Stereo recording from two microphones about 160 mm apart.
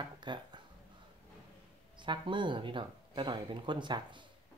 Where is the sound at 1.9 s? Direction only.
30° right (ahead or behind).